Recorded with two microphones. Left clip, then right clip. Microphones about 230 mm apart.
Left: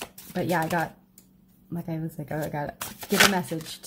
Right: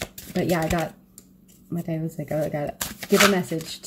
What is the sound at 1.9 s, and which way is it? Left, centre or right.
Speech, centre.